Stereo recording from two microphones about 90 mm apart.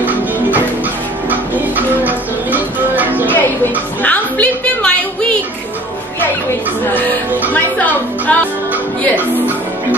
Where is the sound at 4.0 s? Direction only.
15° left (ahead or behind).